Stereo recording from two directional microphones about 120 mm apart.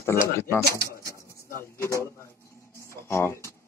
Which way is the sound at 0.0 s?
20° left (ahead or behind).